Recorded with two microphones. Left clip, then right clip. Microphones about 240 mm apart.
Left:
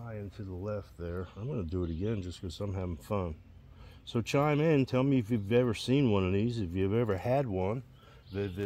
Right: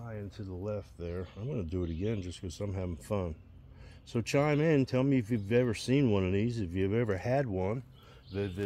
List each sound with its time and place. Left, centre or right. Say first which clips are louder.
0.0 s speech: even; centre
8.3 s speech: even; centre